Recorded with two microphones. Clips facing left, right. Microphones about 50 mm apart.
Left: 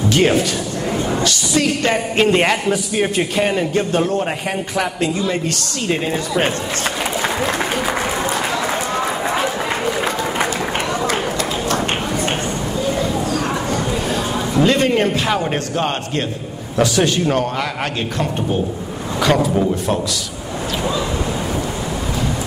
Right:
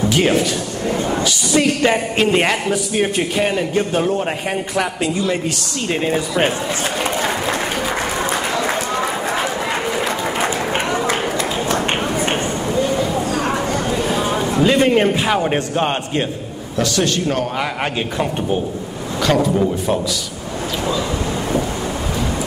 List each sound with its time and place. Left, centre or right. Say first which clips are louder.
0.1 s a man's voice: left 3 dB; centre
1.2 s a woman's voice: right 3 dB; centre
2.1 s a man's voice: left 1 dB; centre
10.9 s run: right 1 dB; right
13.1 s a sound: right 1 dB; right
14.7 s a man's voice: right 4 dB; centre
16.7 s a man's voice: left 2 dB; centre
19.2 s a man's voice: even; centre